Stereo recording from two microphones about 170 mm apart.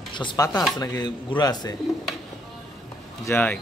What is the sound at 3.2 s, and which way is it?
Speech, 10° left (ahead or behind).